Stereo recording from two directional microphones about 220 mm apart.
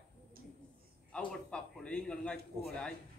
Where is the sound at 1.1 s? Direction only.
5° left (ahead or behind).